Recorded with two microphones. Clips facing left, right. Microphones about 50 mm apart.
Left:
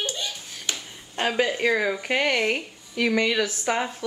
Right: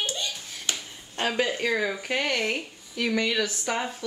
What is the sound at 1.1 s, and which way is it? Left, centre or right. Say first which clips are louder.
Speech: left 2 dB; centre.